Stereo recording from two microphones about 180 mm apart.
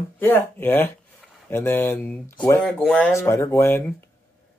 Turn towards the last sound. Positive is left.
turn(degrees=15)  # may be behind; listen again after turning